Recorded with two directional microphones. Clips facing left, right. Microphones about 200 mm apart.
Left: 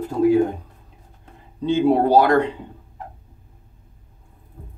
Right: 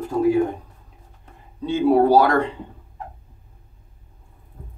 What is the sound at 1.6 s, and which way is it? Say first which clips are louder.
Speech: right 1 dB; 25° left (ahead or behind).